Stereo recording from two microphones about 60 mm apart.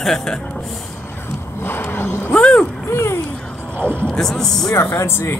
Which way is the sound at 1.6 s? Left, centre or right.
Left.